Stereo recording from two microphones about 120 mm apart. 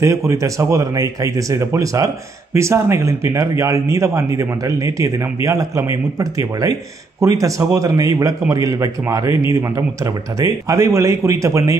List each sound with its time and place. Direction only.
0.0 s speech: 25° right (ahead or behind)